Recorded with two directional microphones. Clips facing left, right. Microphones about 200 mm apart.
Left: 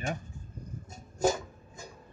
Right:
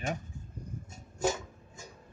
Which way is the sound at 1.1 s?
40° left (ahead or behind).